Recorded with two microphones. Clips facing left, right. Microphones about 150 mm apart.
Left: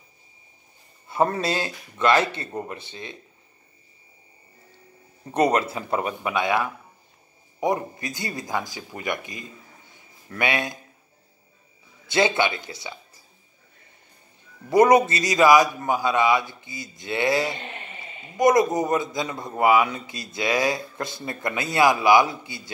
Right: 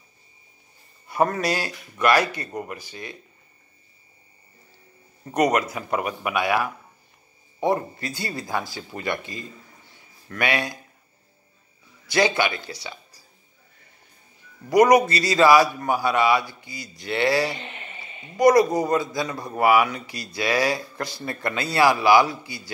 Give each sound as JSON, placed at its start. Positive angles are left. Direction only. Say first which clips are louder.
{"t": 1.0, "sound": "a man's voice", "louder": "even", "side_deg": 25}
{"t": 5.3, "sound": "a man's voice", "louder": "even", "side_deg": 30}
{"t": 12.1, "sound": "speech", "louder": "even", "side_deg": 25}
{"t": 14.7, "sound": "a man's voice", "louder": "even", "side_deg": 25}